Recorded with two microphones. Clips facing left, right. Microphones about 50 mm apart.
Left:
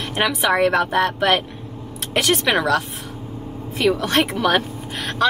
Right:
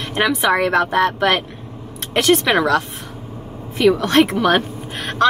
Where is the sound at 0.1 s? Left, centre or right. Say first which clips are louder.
Right 3 dB; centre.